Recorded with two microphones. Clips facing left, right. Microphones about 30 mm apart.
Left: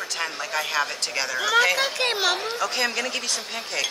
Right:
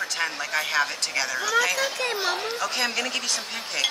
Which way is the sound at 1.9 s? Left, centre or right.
Left.